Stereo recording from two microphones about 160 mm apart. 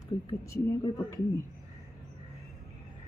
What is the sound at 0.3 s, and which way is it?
A woman's voice, 25° left (ahead or behind).